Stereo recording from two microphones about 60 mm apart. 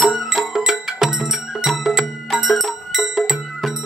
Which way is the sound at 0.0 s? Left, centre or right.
Centre.